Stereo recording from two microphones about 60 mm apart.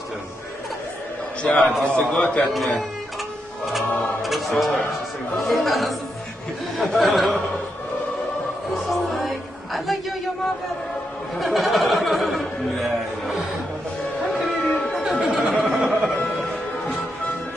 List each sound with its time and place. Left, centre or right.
1.4 s a man's voice: centre
2.4 s speech: centre
3.7 s choir: centre
5.4 s speech: centre
8.7 s music: centre
11.3 s speech: centre
14.6 s music: centre
15.0 s a sound: centre
16.3 s music: centre